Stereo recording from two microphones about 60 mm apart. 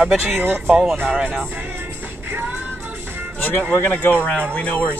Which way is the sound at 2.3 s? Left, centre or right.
Right.